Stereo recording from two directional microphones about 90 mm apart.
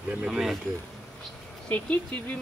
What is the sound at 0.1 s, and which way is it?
Speech, 5° right (ahead or behind).